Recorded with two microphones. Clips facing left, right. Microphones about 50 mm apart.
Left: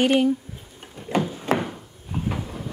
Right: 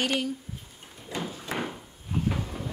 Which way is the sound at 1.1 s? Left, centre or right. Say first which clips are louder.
Left 10 dB; left.